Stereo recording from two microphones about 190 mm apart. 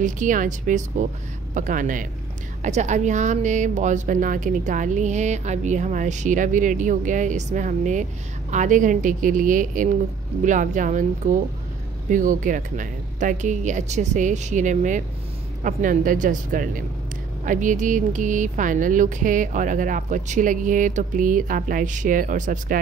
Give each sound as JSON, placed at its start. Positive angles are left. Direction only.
{"t": 0.0, "sound": "speech", "side_deg": -45}